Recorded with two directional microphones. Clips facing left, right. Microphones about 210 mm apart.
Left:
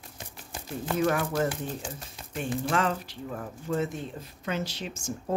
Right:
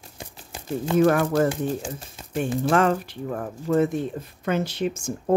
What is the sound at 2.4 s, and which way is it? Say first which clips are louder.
Speech: right 7 dB; 55° right (ahead or behind).